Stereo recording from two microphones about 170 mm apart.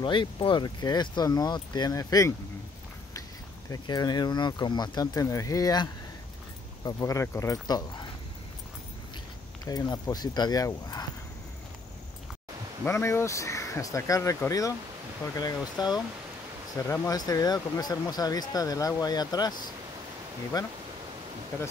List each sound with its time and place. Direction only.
0.0 s speech: 30° left (ahead or behind)
3.7 s speech: 25° left (ahead or behind)
9.7 s speech: 20° left (ahead or behind)
12.8 s speech: 15° left (ahead or behind)
20.5 s speech: 20° left (ahead or behind)